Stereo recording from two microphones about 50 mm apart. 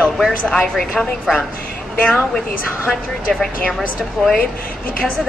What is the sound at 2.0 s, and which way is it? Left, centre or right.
Speech, centre.